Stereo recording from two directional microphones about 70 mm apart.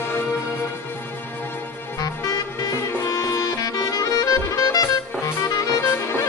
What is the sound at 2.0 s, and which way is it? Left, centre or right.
Music, left.